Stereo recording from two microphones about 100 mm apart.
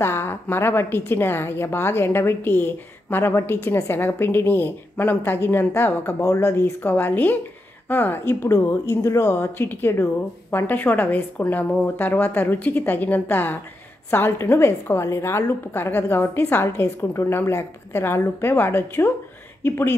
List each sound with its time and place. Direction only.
0.0 s a woman's voice: 25° left (ahead or behind)